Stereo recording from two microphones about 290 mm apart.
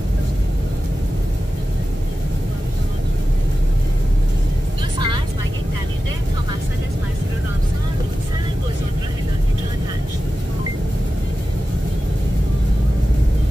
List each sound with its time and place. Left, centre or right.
4.9 s vehicle: centre